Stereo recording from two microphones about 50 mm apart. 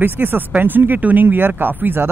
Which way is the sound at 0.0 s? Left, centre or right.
Right.